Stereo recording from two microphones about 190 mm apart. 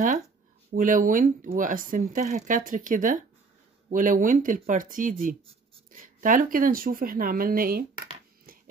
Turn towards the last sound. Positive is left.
turn(degrees=-50)  # may be behind; listen again after turning